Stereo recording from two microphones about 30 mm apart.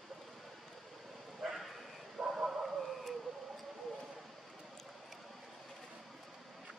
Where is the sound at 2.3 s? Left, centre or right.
Centre.